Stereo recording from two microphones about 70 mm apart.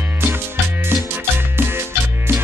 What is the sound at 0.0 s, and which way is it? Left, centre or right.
Music, right.